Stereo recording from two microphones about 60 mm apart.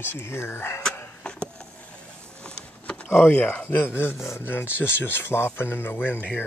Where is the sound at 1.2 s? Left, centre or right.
Centre.